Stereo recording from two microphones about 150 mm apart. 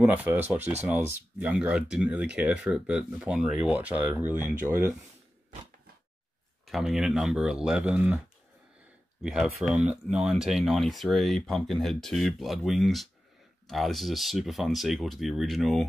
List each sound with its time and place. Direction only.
0.0 s speech: 10° right (ahead or behind)
6.6 s speech: centre (ahead or behind)
9.2 s speech: 5° right (ahead or behind)